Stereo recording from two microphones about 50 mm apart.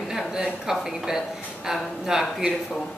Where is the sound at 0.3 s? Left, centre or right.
Centre.